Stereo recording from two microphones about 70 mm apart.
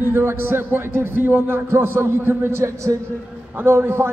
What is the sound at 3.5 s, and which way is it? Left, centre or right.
Speech, right.